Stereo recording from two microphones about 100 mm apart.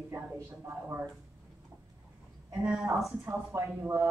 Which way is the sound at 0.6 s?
20° right (ahead or behind).